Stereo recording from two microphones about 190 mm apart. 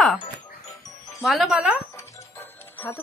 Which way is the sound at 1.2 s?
Centre (ahead or behind).